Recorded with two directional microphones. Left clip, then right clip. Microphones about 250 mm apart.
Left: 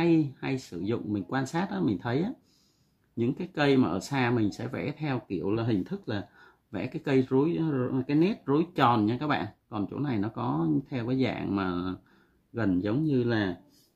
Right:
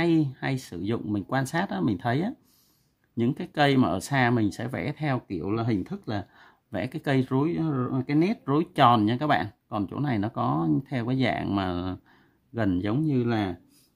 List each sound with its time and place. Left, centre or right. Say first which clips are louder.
0.0 s speech: right 1 dB; right